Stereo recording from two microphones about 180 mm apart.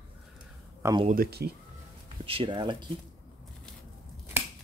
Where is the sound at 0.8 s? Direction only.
15° right (ahead or behind).